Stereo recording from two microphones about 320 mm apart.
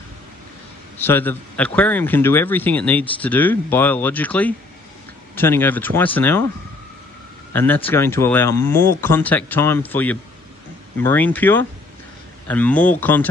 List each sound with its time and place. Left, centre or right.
0.9 s a man's voice: centre
7.5 s a man's voice: centre